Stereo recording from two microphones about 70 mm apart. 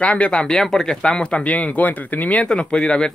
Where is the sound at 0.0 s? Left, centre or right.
Centre.